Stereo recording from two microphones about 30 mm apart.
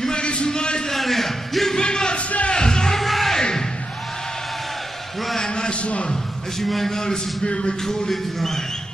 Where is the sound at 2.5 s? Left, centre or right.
Left.